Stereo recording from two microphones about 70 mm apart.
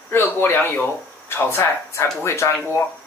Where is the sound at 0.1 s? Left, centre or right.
Left.